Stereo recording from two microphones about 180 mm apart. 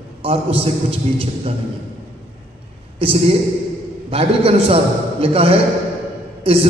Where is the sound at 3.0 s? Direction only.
30° right (ahead or behind).